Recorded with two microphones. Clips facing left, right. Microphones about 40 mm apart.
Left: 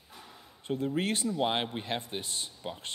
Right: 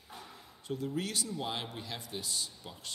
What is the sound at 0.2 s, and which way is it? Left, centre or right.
A man's voice, left.